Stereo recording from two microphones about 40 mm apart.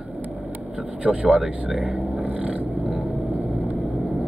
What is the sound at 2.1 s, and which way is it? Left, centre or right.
Vehicle, right.